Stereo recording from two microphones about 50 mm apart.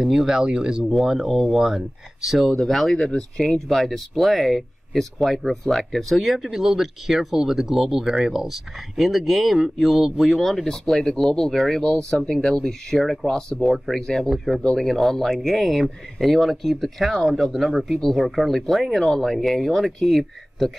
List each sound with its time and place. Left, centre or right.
0.0 s speech: centre
13.3 s speech: centre